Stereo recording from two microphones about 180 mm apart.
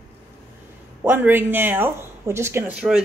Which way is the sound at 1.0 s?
10° right (ahead or behind).